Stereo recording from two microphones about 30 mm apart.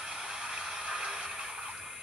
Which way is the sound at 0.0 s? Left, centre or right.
Right.